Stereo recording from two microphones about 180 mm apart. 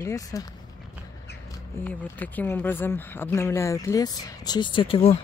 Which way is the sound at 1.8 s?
10° left (ahead or behind).